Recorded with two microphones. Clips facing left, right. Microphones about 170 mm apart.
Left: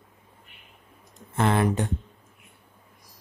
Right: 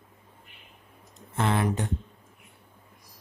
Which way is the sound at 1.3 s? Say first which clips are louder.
Left 3 dB; 55° left (ahead or behind).